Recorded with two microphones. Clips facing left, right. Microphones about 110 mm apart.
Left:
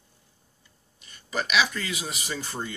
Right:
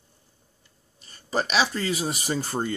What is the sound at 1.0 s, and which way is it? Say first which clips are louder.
Speech: right 4 dB; 35° right (ahead or behind).